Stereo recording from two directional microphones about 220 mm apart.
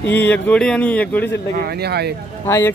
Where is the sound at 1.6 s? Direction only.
45° right (ahead or behind).